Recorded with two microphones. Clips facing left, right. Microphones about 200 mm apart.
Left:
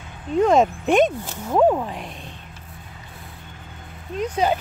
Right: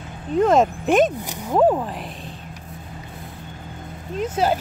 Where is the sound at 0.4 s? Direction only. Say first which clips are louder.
Even; centre (ahead or behind).